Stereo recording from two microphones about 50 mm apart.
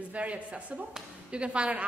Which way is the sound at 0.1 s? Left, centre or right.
Right.